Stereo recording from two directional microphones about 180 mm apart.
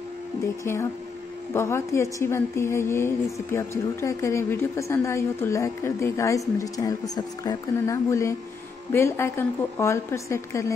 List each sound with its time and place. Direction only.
1.5 s a woman's voice: 15° left (ahead or behind)